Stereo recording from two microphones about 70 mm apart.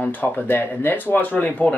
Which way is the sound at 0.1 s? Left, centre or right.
Left.